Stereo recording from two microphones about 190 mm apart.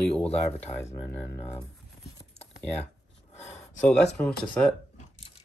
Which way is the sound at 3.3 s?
35° left (ahead or behind).